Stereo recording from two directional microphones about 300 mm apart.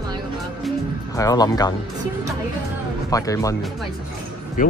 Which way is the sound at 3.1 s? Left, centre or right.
Centre.